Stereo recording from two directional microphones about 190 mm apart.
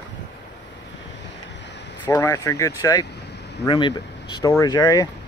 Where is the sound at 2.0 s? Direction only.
20° left (ahead or behind).